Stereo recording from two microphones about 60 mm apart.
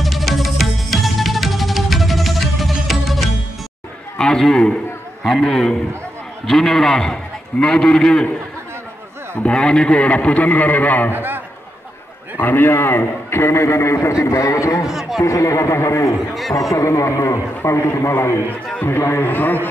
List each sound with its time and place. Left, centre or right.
0.0 s music: centre
4.2 s a man's voice: centre
9.4 s a man's voice: centre
11.1 s a man's voice: right
12.4 s a man's voice: left
14.9 s a man's voice: centre
15.2 s a man's voice: left
18.8 s a man's voice: left